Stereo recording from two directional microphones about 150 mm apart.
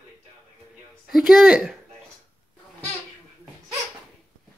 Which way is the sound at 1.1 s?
Centre (ahead or behind).